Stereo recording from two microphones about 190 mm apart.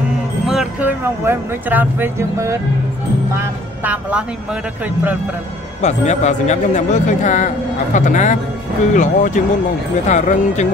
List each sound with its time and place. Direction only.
0.5 s speech: 5° right (ahead or behind)
3.8 s speech: 10° right (ahead or behind)
5.8 s a man's voice: 35° left (ahead or behind)